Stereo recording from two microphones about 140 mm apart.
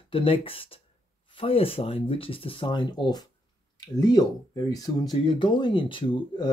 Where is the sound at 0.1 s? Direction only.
40° left (ahead or behind).